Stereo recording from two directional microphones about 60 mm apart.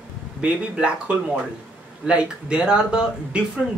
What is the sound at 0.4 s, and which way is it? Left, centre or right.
Speech, centre.